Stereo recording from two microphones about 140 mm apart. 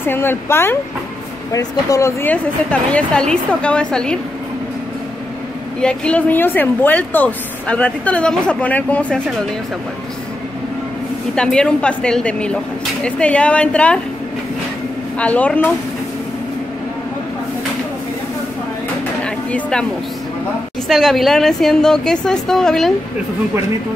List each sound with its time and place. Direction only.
0.0 s speech: 15° left (ahead or behind)
2.2 s speech: 10° left (ahead or behind)
5.8 s speech: 5° left (ahead or behind)
11.3 s speech: 5° left (ahead or behind)
15.1 s speech: 10° left (ahead or behind)
19.2 s a sound: 5° left (ahead or behind)
20.9 s a woman's voice: centre (ahead or behind)